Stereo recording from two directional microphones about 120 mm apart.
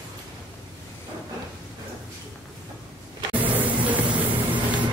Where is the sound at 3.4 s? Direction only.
15° right (ahead or behind).